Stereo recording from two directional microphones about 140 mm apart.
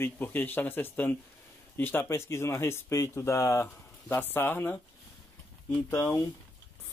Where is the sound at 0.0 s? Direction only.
15° left (ahead or behind).